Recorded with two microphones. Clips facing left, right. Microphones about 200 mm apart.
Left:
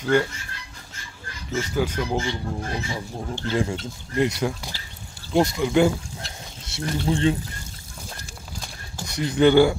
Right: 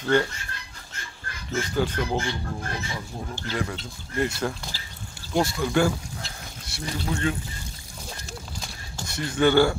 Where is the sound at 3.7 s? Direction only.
15° left (ahead or behind).